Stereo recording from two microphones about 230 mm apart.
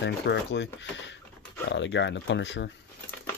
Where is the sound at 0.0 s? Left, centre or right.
Left.